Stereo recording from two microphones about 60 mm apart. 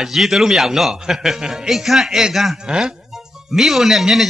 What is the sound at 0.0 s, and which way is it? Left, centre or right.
A man's voice, centre.